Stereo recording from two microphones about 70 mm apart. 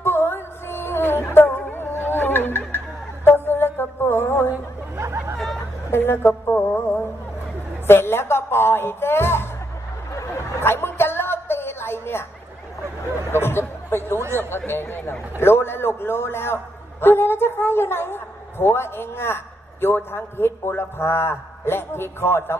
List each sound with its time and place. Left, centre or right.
0.0 s music: left
3.4 s mantra: left
4.9 s hubbub: right
5.9 s a sound: left
7.8 s a man's voice: left
10.1 s a sound: left
13.3 s a man's voice: left